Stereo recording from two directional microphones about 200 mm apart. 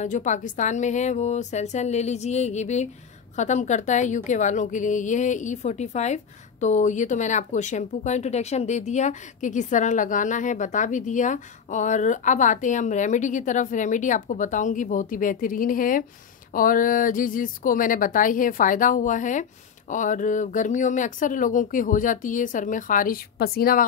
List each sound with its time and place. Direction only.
0.0 s a woman's voice: 40° left (ahead or behind)